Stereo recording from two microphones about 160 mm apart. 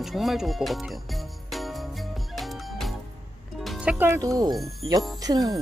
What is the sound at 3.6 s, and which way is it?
Speech, 5° right (ahead or behind).